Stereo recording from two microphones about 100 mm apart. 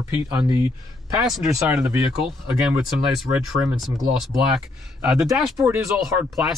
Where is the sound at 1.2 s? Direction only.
5° right (ahead or behind).